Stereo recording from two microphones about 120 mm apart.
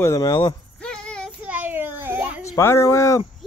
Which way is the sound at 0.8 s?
5° left (ahead or behind).